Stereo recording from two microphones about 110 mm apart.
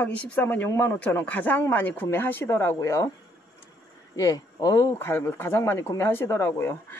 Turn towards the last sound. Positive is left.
turn(degrees=20)  # may be behind; listen again after turning